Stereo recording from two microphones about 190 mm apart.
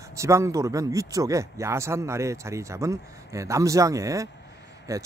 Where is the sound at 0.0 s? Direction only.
15° right (ahead or behind).